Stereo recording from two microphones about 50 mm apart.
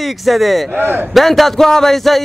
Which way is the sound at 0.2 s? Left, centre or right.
Centre.